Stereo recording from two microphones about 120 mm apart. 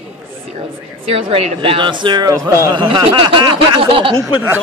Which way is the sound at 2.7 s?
40° right (ahead or behind).